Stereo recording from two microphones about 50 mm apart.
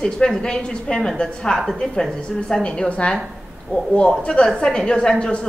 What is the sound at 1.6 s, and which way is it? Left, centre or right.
A woman's voice, centre.